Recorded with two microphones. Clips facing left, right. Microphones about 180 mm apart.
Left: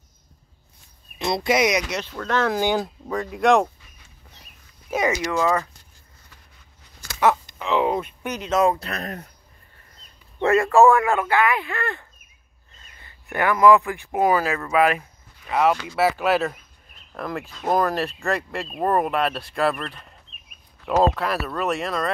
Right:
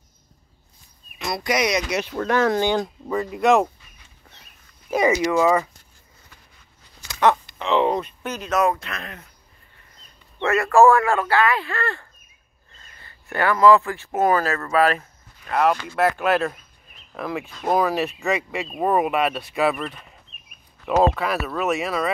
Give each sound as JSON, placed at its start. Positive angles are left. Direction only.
{"t": 1.1, "sound": "speech", "side_deg": 25}
{"t": 1.9, "sound": "speech", "side_deg": -10}
{"t": 2.5, "sound": "speech", "side_deg": 5}
{"t": 5.1, "sound": "speech", "side_deg": -10}
{"t": 7.5, "sound": "speech", "side_deg": 5}
{"t": 10.4, "sound": "speech", "side_deg": 30}